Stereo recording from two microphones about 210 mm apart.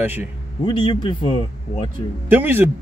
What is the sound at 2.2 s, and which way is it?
Speech, 10° right (ahead or behind).